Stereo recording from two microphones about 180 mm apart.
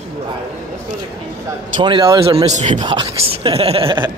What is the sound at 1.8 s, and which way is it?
Speech, 25° right (ahead or behind).